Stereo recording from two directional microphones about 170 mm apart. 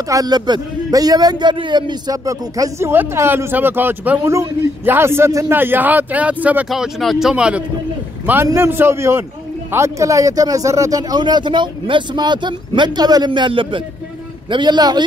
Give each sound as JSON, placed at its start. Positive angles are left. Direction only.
{"t": 0.1, "sound": "a man's voice", "side_deg": -25}